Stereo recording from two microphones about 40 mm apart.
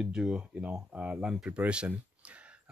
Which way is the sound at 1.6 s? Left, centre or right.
Right.